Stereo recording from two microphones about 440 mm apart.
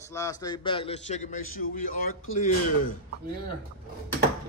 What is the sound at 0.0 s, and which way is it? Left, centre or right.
A man's voice, centre.